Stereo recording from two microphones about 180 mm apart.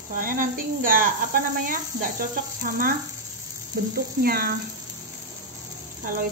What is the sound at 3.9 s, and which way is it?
Speech, 55° right (ahead or behind).